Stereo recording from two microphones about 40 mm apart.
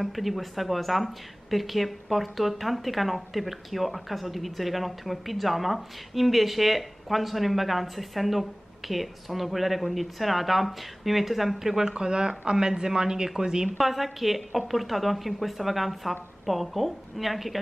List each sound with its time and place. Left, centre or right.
0.0 s speech: centre
13.7 s speech: centre